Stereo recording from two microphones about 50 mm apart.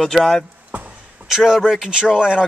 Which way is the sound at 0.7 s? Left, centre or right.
Right.